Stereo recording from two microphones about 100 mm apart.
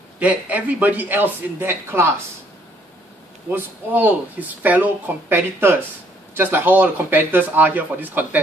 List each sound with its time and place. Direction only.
0.2 s a man's voice: 15° right (ahead or behind)
3.4 s speech: 20° right (ahead or behind)